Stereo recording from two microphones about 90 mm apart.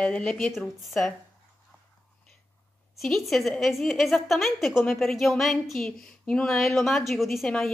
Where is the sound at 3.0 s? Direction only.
Centre (ahead or behind).